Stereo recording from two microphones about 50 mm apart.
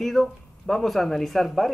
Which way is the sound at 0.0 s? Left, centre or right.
Centre.